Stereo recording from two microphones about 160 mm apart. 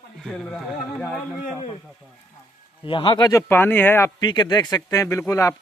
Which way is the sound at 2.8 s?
30° left (ahead or behind).